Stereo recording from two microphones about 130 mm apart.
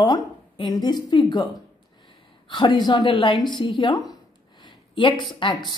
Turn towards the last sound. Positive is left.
turn(degrees=35)  # may be behind; listen again after turning